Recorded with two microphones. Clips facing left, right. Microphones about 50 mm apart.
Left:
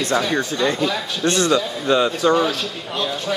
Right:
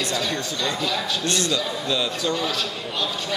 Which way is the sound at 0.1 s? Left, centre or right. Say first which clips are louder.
Left 6 dB; left.